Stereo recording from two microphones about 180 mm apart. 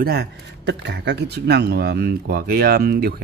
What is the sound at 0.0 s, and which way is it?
A man's voice, 65° right (ahead or behind).